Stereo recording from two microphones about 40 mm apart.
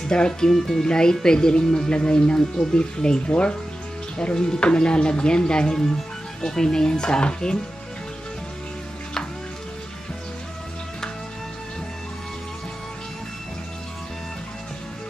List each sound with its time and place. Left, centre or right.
0.1 s speech: centre
0.5 s speech: centre
0.8 s speech: centre